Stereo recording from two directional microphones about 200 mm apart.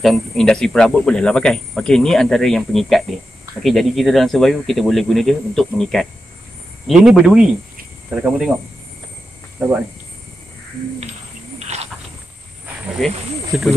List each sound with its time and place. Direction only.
0.0 s speech: centre (ahead or behind)
9.6 s speech: 5° right (ahead or behind)
11.6 s owl: 30° right (ahead or behind)
13.0 s speech: centre (ahead or behind)